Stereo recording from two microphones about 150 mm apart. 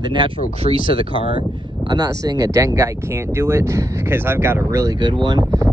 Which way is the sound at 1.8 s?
25° right (ahead or behind).